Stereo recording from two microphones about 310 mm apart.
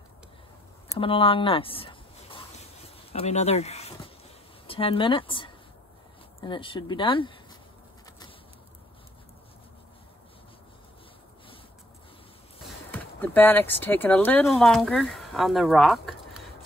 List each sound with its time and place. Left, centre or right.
0.9 s a sound: centre
4.6 s speech: centre
12.9 s speech: centre